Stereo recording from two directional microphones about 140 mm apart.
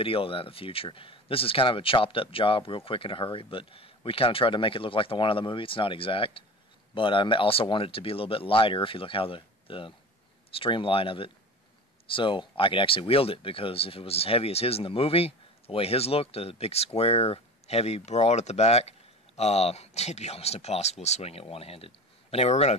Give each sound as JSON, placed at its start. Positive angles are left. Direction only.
{"t": 0.0, "sound": "speech", "side_deg": 40}